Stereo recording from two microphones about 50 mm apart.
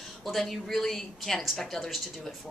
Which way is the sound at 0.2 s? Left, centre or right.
Centre.